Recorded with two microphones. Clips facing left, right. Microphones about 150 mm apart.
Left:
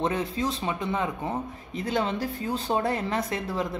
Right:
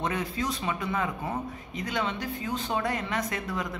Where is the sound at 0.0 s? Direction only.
25° left (ahead or behind).